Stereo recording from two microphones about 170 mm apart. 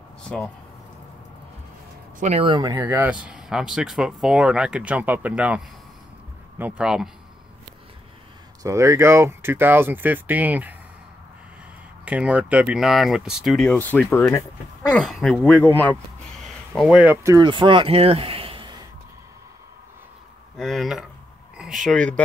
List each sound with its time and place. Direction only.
0.2 s a sound: 5° left (ahead or behind)
2.1 s speech: 45° right (ahead or behind)
2.4 s speech: 25° right (ahead or behind)
2.9 s speech: 10° right (ahead or behind)
6.6 s speech: 5° right (ahead or behind)
8.6 s speech: 15° right (ahead or behind)
12.0 s speech: 10° right (ahead or behind); by 16.0 s 10° left (ahead or behind)
16.4 s speech: centre (ahead or behind); by 18.8 s 30° right (ahead or behind)
20.5 s speech: centre (ahead or behind)